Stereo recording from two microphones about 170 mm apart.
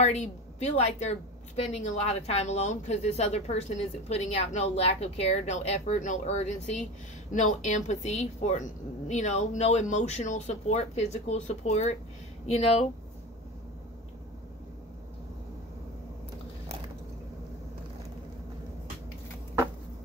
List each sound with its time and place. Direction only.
0.0 s a woman's voice: 40° left (ahead or behind)